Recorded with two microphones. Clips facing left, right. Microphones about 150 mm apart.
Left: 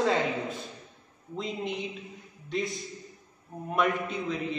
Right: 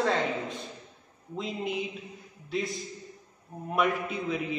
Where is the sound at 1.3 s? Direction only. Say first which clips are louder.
Right 1 dB; 5° right (ahead or behind).